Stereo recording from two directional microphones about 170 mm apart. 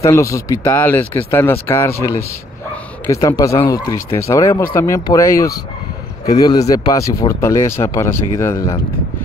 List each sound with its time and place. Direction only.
0.0 s speech: 15° left (ahead or behind)